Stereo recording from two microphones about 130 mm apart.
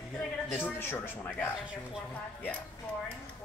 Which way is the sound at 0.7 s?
15° left (ahead or behind).